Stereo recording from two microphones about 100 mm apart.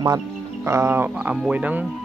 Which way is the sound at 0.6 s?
25° right (ahead or behind).